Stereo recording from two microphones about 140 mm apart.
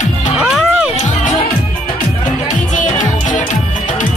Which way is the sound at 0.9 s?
65° left (ahead or behind).